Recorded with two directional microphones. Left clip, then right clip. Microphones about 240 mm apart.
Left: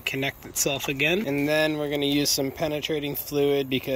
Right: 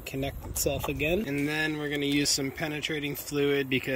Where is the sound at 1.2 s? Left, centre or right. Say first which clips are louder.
Left 6 dB; centre.